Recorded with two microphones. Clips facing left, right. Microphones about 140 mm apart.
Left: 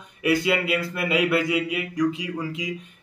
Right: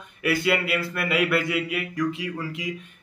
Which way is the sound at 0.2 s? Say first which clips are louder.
Left 2 dB; 20° left (ahead or behind).